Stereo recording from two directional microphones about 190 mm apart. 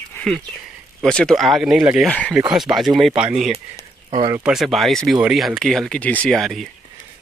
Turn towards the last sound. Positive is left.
turn(degrees=0)  # may be behind; listen again after turning